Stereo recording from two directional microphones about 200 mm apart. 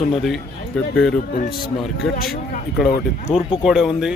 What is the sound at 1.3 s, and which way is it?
Speech, 50° left (ahead or behind).